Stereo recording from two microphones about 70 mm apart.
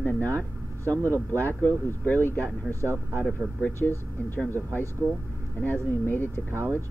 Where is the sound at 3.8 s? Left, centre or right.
Centre.